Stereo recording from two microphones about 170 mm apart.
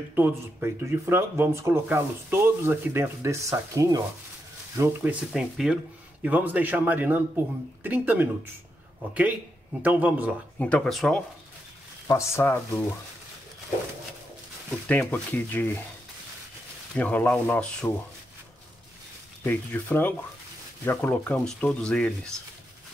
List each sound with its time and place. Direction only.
0.1 s speech: 15° right (ahead or behind)
5.3 s speech: centre (ahead or behind)
9.8 s speech: 10° right (ahead or behind)
10.6 s speech: 5° left (ahead or behind)
12.1 s speech: 15° left (ahead or behind)
14.9 s speech: 10° left (ahead or behind)
16.9 s speech: 10° left (ahead or behind)
19.4 s speech: 10° left (ahead or behind)